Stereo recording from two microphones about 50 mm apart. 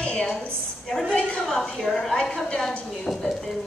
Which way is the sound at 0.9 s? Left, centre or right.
Centre.